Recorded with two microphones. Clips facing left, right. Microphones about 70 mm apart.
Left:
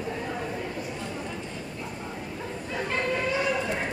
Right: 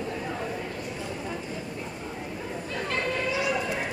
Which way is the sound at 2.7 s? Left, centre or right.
Centre.